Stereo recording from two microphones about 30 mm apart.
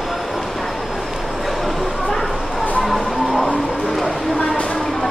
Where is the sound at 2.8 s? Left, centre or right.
Centre.